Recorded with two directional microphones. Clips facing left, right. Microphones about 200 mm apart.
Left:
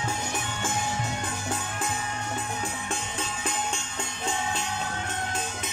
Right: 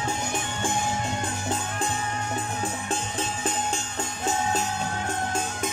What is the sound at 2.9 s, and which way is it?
Music, 35° right (ahead or behind).